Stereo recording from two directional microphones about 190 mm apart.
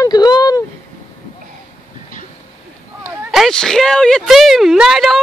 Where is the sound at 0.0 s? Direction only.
20° left (ahead or behind).